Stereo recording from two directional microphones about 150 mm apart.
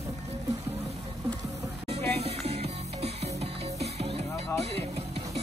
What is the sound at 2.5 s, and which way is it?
Music, 45° right (ahead or behind).